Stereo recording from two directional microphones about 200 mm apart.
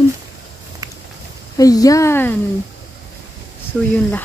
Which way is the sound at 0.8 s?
15° right (ahead or behind).